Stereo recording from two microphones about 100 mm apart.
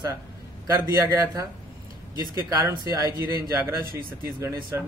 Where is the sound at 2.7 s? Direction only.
35° right (ahead or behind).